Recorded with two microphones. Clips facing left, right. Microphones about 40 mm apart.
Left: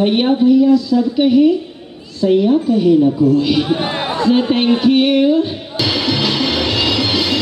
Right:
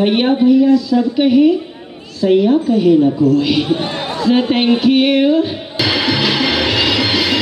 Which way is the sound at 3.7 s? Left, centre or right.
Left.